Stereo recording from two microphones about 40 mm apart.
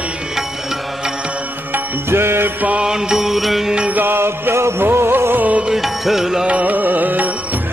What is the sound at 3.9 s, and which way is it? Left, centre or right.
Music, right.